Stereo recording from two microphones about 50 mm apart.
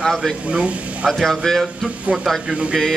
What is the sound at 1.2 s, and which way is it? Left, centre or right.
Speech, centre.